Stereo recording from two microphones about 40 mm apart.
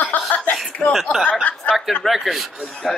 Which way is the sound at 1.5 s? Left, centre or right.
Left.